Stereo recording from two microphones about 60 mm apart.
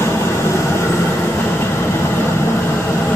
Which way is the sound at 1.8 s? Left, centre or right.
Left.